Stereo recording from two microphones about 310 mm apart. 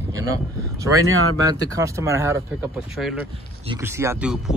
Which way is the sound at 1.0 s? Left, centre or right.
Right.